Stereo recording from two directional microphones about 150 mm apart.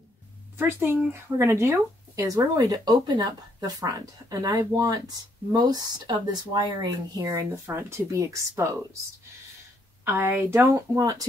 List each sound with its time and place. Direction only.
0.6 s speech: 15° right (ahead or behind)
10.0 s speech: 15° right (ahead or behind)